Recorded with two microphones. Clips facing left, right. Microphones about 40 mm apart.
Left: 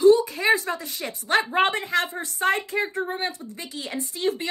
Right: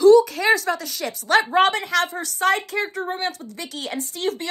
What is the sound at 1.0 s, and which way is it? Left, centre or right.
Speech, right.